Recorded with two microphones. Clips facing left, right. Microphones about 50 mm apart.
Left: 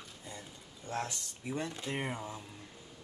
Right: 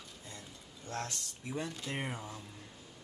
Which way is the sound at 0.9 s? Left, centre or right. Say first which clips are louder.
Left 2 dB; centre.